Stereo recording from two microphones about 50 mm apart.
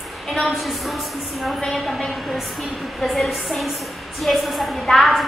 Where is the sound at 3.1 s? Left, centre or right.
Centre.